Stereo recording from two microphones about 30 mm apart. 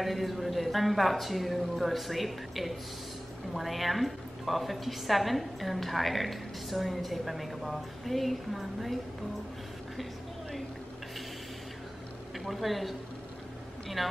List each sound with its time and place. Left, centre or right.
0.0 s a woman's voice: centre
12.4 s a woman's voice: centre
14.0 s a woman's voice: centre